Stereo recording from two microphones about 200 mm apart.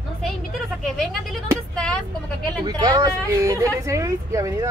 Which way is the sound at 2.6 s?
20° right (ahead or behind).